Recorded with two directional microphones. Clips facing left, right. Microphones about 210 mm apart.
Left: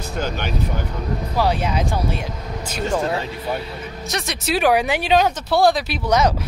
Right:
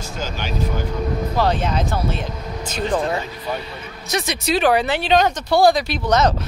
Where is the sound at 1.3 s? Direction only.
10° left (ahead or behind).